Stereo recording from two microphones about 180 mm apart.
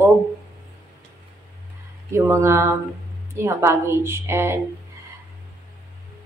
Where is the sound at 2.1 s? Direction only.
15° right (ahead or behind).